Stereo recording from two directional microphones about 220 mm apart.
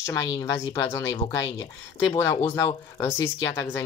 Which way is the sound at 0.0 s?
15° left (ahead or behind).